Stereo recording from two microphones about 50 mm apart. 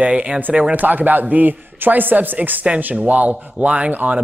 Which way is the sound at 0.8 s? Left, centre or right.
Right.